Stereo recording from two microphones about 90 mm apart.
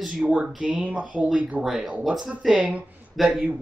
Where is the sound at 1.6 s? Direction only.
Centre (ahead or behind).